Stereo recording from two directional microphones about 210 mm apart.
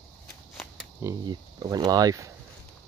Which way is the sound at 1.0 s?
20° right (ahead or behind).